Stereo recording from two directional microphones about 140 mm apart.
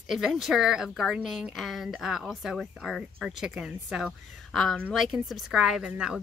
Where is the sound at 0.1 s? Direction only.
Centre (ahead or behind).